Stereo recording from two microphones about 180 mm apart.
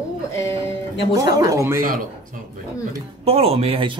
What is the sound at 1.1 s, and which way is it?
Speech, 20° right (ahead or behind).